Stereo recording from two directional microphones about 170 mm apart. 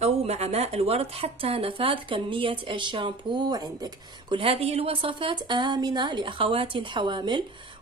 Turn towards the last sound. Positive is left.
turn(degrees=-30)  # may be behind; listen again after turning